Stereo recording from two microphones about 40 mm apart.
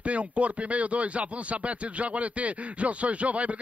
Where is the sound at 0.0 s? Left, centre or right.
Right.